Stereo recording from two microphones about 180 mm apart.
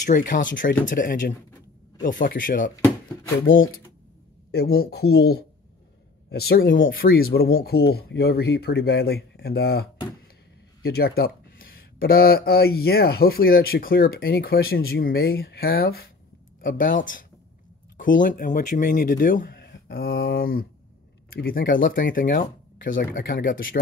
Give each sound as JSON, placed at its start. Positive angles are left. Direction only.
{"t": 0.0, "sound": "speech", "side_deg": 45}
{"t": 3.5, "sound": "speech", "side_deg": 90}
{"t": 4.5, "sound": "speech", "side_deg": 60}
{"t": 6.9, "sound": "speech", "side_deg": 55}
{"t": 16.6, "sound": "speech", "side_deg": 50}